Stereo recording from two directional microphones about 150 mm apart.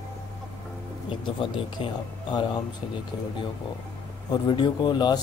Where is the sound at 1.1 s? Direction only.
35° left (ahead or behind).